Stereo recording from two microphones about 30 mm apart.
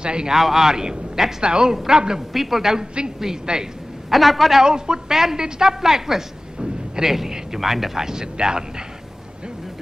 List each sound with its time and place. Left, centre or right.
0.0 s a man's voice: right
0.4 s speech: centre
0.7 s a man's voice: right
1.4 s a man's voice: right
2.3 s speech: centre
3.5 s a man's voice: right
4.1 s a man's voice: centre
4.6 s speech: right
6.6 s a sound: centre
7.2 s speech: centre